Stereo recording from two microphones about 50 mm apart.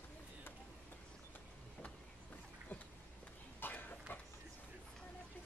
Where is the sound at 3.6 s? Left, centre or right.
Left.